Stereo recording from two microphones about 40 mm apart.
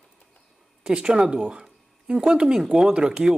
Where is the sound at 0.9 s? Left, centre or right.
Right.